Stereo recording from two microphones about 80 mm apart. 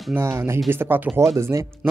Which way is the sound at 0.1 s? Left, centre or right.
Right.